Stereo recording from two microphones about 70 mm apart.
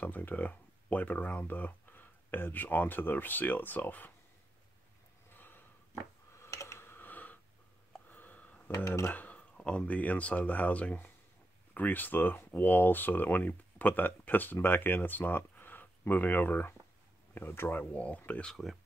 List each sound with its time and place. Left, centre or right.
0.0 s speech: left
5.3 s sniff: left
6.3 s a sound: left
8.1 s sniff: left
8.7 s speech: left
9.1 s speech: left
17.9 s speech: centre
18.4 s speech: centre